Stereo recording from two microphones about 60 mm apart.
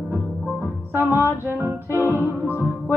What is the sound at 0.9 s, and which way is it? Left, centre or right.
Music, right.